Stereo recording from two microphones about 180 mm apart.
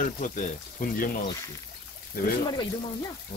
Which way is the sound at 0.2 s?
50° left (ahead or behind).